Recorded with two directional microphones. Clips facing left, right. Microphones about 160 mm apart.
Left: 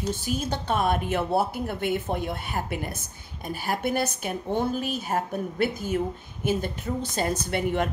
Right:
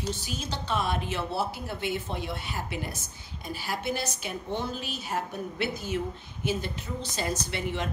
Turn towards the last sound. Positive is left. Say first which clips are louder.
# left 6 dB
turn(degrees=50)  # may be behind; listen again after turning